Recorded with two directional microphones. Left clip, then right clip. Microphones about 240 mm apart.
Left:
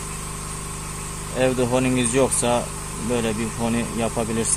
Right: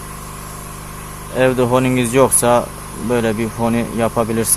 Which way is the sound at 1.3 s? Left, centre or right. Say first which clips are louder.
Right 6 dB; right.